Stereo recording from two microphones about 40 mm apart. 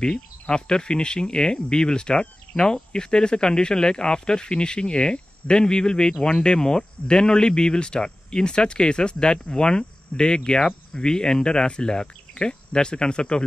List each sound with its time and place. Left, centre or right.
0.0 s speech: left